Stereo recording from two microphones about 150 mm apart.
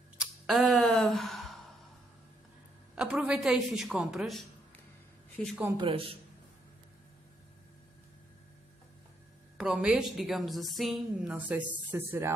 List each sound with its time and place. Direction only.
0.2 s a sound: centre (ahead or behind)
3.0 s a woman's voice: 5° right (ahead or behind)
5.8 s speech: 35° right (ahead or behind)
9.6 s a woman's voice: 5° right (ahead or behind)